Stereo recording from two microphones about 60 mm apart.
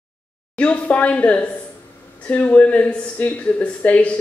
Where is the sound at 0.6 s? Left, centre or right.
Left.